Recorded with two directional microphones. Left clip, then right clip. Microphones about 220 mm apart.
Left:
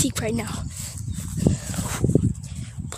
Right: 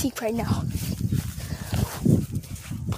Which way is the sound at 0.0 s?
20° left (ahead or behind).